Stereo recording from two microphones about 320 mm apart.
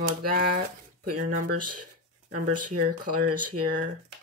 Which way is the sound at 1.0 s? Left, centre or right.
Right.